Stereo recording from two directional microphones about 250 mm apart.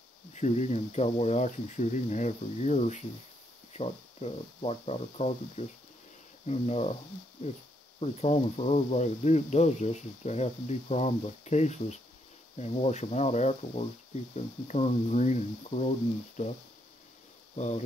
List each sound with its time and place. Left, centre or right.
0.3 s speech: left
8.0 s speech: left
17.6 s speech: left